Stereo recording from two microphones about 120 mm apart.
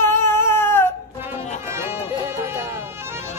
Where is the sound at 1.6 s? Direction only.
20° right (ahead or behind).